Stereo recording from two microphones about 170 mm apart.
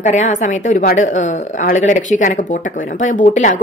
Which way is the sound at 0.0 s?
45° left (ahead or behind).